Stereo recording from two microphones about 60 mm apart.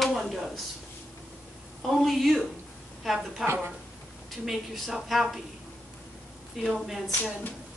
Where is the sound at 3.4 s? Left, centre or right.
Right.